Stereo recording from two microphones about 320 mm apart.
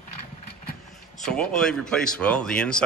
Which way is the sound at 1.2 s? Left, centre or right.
Centre.